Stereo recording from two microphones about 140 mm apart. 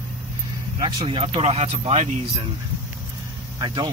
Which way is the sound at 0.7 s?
35° right (ahead or behind).